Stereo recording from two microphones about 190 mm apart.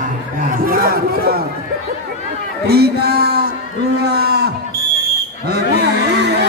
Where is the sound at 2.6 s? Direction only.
55° right (ahead or behind).